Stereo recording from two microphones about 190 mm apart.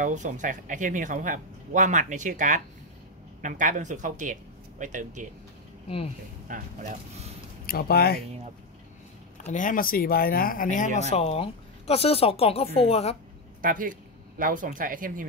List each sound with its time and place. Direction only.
0.0 s speech: 40° right (ahead or behind)
6.4 s speech: 45° right (ahead or behind)
7.6 s speech: 55° left (ahead or behind)
9.4 s speech: 40° left (ahead or behind)
13.6 s a man's voice: 45° right (ahead or behind)